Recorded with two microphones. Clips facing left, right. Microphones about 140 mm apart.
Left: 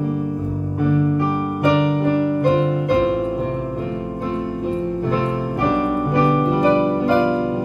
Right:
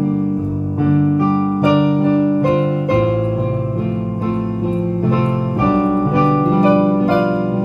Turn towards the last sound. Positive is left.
turn(degrees=-10)  # may be behind; listen again after turning